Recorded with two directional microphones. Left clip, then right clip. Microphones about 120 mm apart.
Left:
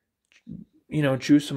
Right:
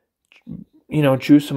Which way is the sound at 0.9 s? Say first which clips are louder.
Right 7 dB; 5° right (ahead or behind).